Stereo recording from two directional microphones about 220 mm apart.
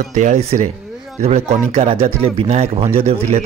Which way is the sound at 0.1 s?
35° right (ahead or behind).